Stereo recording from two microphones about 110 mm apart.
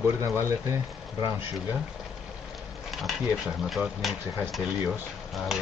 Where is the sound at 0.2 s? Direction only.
25° right (ahead or behind).